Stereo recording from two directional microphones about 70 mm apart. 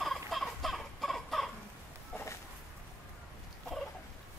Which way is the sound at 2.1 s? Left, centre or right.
Centre.